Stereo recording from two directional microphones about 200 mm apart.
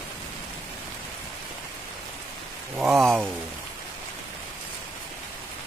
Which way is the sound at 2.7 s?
Centre (ahead or behind).